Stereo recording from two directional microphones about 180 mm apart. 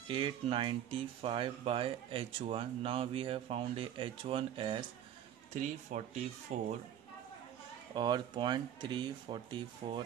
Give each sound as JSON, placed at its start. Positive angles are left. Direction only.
{"t": 0.1, "sound": "speech", "side_deg": -30}
{"t": 7.9, "sound": "speech", "side_deg": -25}